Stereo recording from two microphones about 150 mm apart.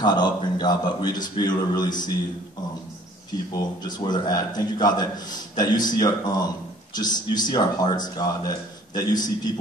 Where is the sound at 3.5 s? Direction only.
30° left (ahead or behind).